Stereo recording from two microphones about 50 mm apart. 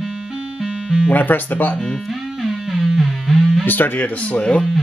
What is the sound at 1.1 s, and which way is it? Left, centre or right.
Speech, left.